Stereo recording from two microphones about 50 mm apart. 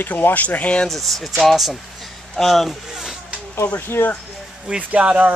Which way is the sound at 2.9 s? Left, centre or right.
Centre.